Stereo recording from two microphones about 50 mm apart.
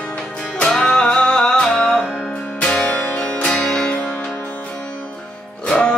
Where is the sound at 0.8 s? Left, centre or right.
Centre.